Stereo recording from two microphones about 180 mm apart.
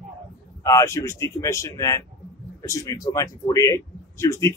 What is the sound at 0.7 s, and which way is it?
Speech, 15° left (ahead or behind).